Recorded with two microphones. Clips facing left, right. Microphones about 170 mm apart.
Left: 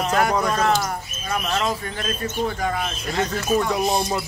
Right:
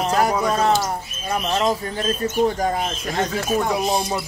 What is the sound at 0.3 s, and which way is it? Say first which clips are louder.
Speech: right 1 dB; 10° right (ahead or behind).